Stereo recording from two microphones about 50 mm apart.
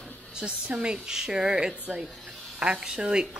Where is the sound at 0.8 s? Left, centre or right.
Centre.